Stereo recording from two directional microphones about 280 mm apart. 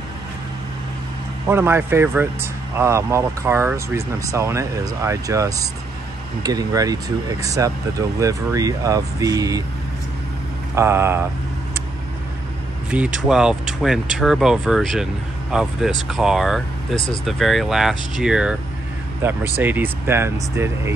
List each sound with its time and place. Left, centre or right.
1.5 s speech: centre
10.7 s speech: centre
12.9 s speech: centre
16.9 s speech: centre
17.2 s speech: centre